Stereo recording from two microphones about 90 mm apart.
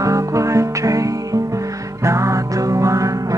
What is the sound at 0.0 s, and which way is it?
Music, 35° right (ahead or behind).